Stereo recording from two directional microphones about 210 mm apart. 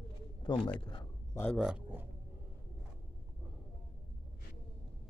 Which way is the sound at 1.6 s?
5° right (ahead or behind).